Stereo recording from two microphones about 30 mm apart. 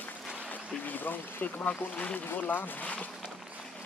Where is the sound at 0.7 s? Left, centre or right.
Left.